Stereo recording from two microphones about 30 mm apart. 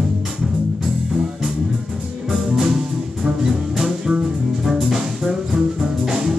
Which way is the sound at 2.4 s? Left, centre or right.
Centre.